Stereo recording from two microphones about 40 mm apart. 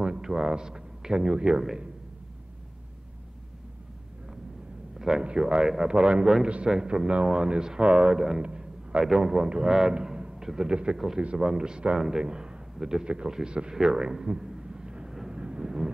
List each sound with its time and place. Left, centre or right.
0.0 s a sound: right
0.3 s speech: centre
4.9 s a sound: centre
5.2 s speech: right
8.1 s a man's voice: centre
8.4 s a sound: right
9.0 s a man's voice: centre
11.2 s a man's voice: right
11.5 s a man's voice: right
15.0 s vehicle: centre
15.3 s vehicle: right